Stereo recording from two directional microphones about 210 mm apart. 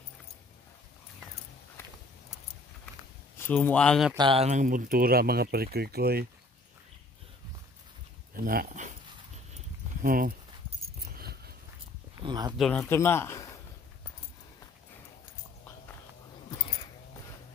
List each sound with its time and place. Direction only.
1.8 s a sound: 10° left (ahead or behind)
3.3 s speech: 10° left (ahead or behind)
4.1 s speech: 25° right (ahead or behind); by 6.2 s 50° right (ahead or behind)
8.5 s speech: 40° right (ahead or behind)
10.0 s speech: 40° right (ahead or behind)
11.1 s a sound: 50° right (ahead or behind)
12.2 s speech: 20° right (ahead or behind)
12.5 s a man's voice: 5° left (ahead or behind)